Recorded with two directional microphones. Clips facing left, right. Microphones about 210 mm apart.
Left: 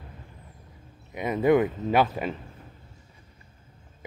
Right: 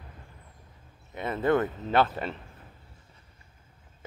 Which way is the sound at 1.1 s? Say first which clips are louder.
Left 4 dB; 15° left (ahead or behind).